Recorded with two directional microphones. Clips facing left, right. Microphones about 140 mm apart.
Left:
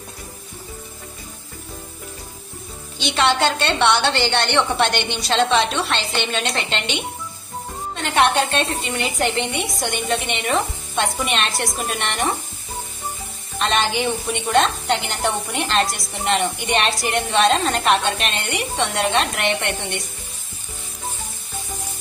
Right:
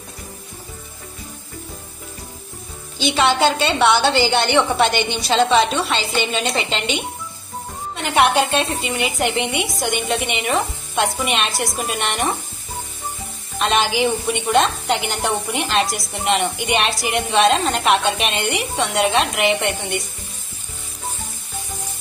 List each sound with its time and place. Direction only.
3.0 s a woman's voice: centre (ahead or behind)
13.6 s a woman's voice: centre (ahead or behind)